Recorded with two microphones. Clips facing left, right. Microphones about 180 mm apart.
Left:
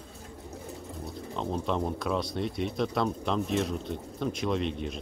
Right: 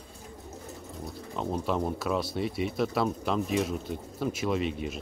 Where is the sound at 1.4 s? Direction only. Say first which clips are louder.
Right 1 dB; 5° right (ahead or behind).